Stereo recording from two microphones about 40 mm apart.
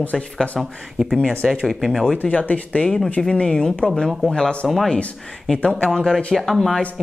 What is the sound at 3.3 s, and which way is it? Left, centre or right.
Speech, centre.